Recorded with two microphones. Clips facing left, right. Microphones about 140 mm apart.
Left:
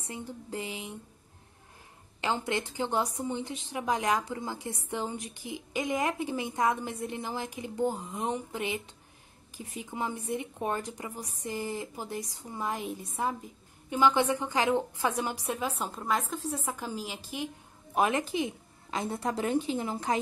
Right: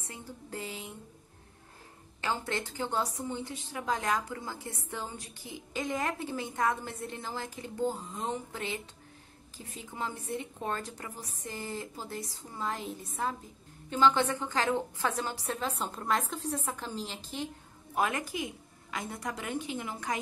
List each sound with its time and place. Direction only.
0.0 s a woman's voice: 20° left (ahead or behind)
2.2 s a woman's voice: 20° left (ahead or behind)